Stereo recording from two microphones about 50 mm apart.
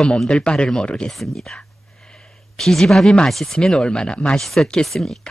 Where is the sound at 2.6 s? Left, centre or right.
Centre; by 4.4 s left.